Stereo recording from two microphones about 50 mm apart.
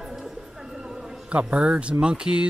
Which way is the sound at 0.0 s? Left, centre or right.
Centre.